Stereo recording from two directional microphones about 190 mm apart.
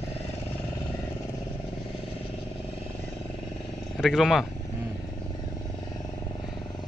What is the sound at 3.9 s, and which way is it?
Speech, centre (ahead or behind).